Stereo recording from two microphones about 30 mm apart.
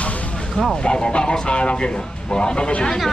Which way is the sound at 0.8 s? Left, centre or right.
Left.